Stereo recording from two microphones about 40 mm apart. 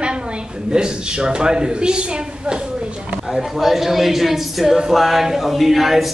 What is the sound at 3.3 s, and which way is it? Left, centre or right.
A man's voice, centre.